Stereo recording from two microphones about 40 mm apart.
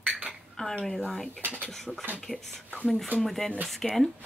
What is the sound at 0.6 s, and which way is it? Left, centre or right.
Speech, left.